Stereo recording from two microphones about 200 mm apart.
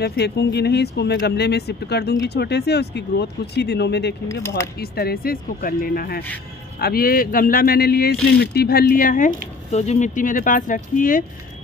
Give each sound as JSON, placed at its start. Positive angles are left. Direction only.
{"t": 0.0, "sound": "speech", "side_deg": 55}
{"t": 4.3, "sound": "speech", "side_deg": 15}
{"t": 4.7, "sound": "speech", "side_deg": 50}